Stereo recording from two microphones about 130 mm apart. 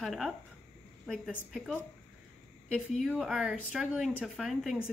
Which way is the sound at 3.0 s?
Centre (ahead or behind).